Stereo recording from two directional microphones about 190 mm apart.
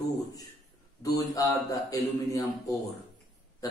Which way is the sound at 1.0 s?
20° left (ahead or behind).